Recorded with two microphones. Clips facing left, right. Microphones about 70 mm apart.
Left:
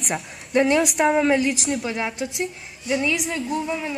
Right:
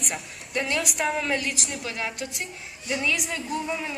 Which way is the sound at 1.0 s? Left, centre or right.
Centre.